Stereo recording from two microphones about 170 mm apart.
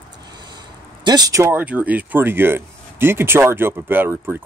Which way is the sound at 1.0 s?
25° right (ahead or behind).